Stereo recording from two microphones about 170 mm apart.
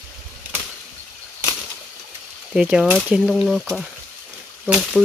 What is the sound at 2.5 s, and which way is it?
Speech, 5° right (ahead or behind).